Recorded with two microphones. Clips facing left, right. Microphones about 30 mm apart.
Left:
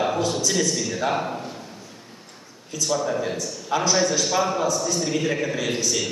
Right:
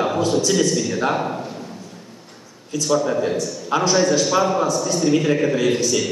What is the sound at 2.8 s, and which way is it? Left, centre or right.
A man's voice, centre.